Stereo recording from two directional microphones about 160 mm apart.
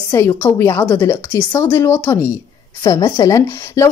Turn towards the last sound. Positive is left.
turn(degrees=20)  # may be behind; listen again after turning